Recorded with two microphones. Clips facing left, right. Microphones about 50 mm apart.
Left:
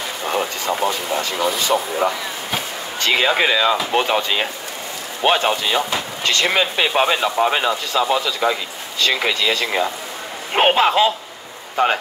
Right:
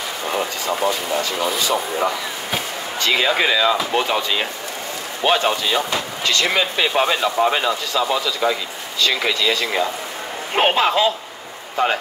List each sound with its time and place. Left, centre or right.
0.7 s a man's voice: centre
3.0 s a man's voice: left